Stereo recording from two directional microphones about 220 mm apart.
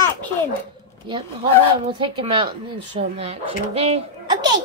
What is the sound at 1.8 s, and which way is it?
Speech, 25° right (ahead or behind).